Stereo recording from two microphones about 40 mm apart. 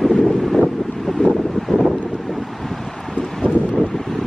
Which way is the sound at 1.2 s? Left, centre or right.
Left.